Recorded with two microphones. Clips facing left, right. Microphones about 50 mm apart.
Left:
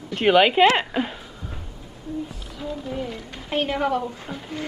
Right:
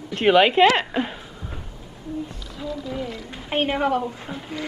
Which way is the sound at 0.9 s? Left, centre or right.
Centre.